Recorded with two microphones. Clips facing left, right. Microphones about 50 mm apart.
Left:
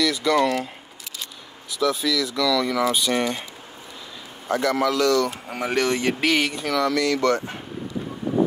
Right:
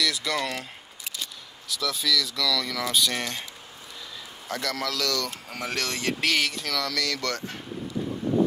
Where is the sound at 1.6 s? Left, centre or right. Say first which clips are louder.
Left 5 dB; centre.